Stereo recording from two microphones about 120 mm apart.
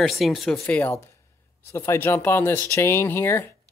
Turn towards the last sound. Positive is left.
turn(degrees=20)  # may be behind; listen again after turning